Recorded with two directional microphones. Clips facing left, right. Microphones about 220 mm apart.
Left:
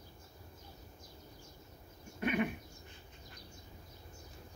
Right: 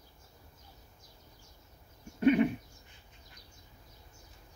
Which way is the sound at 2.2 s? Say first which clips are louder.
Right 9 dB; 30° right (ahead or behind).